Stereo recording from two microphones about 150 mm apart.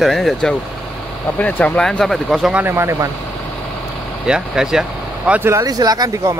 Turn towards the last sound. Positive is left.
turn(degrees=-25)  # may be behind; listen again after turning